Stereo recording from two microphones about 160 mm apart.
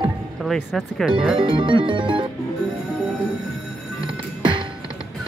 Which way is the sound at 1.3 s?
30° right (ahead or behind).